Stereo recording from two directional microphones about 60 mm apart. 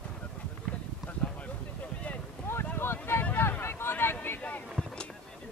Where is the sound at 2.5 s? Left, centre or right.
Left.